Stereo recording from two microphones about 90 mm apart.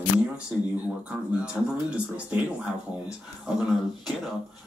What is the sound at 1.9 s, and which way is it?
Speech, 15° right (ahead or behind).